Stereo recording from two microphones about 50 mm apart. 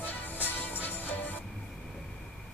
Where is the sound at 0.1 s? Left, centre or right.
Left.